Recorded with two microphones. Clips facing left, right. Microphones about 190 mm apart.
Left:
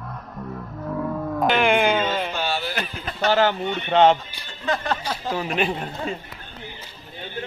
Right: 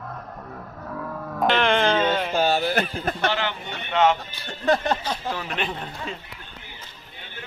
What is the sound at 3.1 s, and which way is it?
Speech, 50° right (ahead or behind).